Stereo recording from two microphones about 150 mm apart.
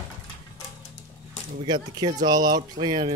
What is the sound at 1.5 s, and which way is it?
Speech, 30° right (ahead or behind).